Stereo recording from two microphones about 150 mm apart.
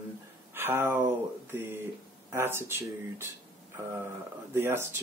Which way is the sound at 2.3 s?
15° right (ahead or behind).